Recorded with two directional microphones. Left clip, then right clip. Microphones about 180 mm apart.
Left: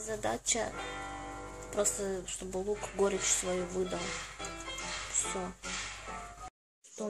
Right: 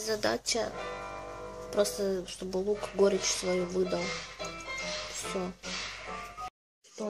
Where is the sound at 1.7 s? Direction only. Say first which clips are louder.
Right 4 dB; 15° right (ahead or behind).